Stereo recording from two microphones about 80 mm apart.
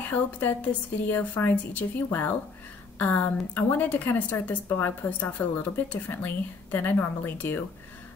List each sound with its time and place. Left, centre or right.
0.1 s a woman's voice: left